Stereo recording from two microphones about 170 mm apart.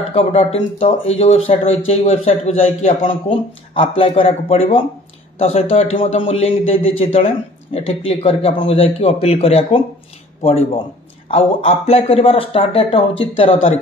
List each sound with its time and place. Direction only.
0.1 s a man's voice: 35° left (ahead or behind)